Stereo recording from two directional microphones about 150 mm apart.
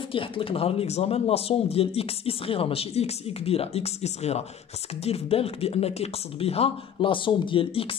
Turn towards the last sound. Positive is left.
turn(degrees=35)  # may be behind; listen again after turning